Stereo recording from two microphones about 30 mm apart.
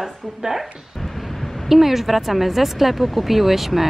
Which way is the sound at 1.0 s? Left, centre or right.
Centre.